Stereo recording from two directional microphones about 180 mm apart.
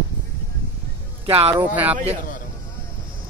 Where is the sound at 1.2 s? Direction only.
30° right (ahead or behind).